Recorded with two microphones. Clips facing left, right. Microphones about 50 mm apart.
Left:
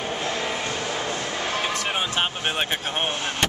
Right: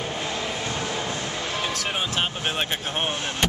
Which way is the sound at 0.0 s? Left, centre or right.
Centre.